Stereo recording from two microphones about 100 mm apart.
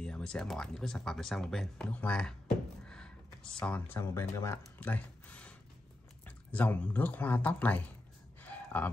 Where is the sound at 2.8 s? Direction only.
10° left (ahead or behind).